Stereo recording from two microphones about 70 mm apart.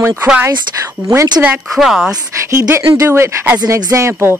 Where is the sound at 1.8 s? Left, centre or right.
Centre.